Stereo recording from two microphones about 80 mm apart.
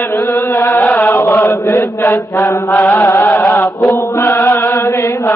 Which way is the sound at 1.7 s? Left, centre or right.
Left.